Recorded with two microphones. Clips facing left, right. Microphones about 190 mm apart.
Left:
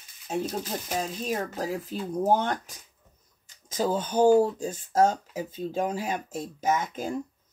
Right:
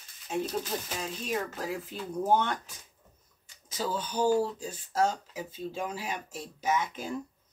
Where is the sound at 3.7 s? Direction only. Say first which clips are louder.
Left 7 dB; 45° left (ahead or behind).